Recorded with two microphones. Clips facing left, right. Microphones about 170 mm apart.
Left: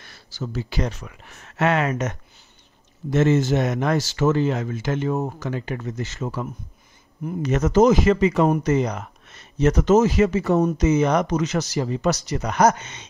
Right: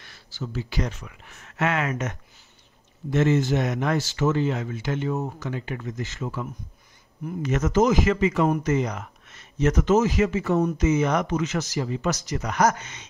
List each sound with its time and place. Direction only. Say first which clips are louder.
0.0 s speech: left 3 dB; 40° left (ahead or behind)
7.4 s speech: left 4 dB; 35° left (ahead or behind)